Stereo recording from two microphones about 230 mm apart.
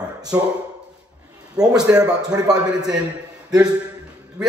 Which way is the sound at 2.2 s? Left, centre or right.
Centre.